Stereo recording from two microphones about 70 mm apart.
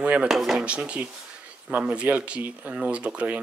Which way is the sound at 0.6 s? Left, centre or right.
Centre.